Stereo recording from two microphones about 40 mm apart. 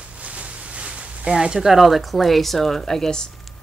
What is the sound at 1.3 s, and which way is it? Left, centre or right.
Speech, centre.